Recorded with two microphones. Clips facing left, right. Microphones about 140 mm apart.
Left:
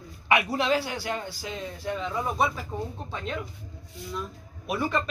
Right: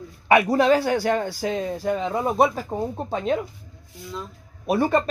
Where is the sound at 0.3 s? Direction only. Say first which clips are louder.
Right 7 dB; 45° right (ahead or behind).